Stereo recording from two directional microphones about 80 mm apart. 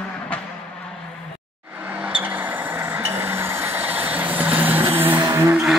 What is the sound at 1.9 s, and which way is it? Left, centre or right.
Vehicle, centre.